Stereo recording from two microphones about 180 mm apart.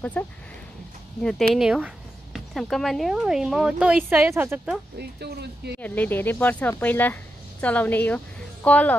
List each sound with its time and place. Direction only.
0.2 s speech: 10° left (ahead or behind)
1.5 s speech: 5° right (ahead or behind)
4.9 s speech: 65° right (ahead or behind)
5.8 s speech: 10° left (ahead or behind)